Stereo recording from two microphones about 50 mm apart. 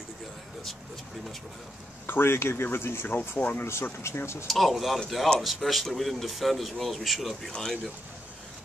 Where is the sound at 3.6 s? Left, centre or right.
Left.